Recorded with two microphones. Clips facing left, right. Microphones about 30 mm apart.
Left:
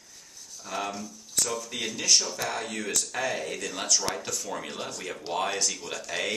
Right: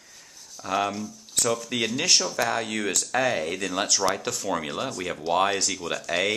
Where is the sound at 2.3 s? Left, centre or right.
Right.